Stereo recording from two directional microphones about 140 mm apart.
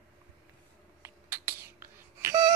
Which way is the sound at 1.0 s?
15° right (ahead or behind).